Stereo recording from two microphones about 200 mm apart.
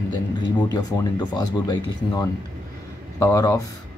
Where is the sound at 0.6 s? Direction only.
20° left (ahead or behind).